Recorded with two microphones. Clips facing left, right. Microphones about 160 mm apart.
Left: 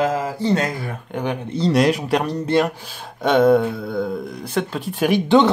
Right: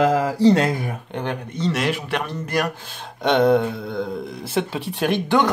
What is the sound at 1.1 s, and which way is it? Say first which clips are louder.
Speech: left 4 dB; 10° left (ahead or behind).